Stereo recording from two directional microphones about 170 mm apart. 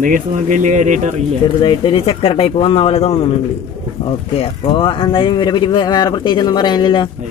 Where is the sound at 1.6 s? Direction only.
25° left (ahead or behind).